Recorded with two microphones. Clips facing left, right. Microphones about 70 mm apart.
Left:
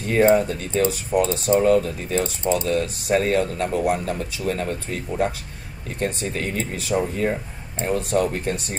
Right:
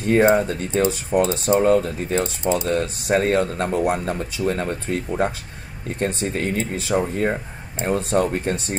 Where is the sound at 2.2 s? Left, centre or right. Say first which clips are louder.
Even; right.